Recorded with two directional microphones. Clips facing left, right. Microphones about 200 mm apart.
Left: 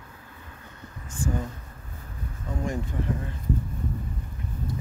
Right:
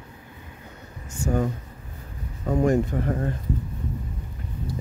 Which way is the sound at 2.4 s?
60° right (ahead or behind).